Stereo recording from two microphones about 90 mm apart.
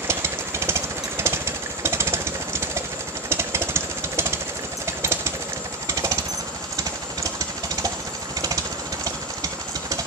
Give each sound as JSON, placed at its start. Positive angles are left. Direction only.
{"t": 0.1, "sound": "jackhammer", "side_deg": -30}
{"t": 3.3, "sound": "vehicle", "side_deg": -30}
{"t": 4.8, "sound": "a sound", "side_deg": -30}
{"t": 5.9, "sound": "jackhammer", "side_deg": -40}
{"t": 7.3, "sound": "jackhammer", "side_deg": -40}
{"t": 9.0, "sound": "engine", "side_deg": -40}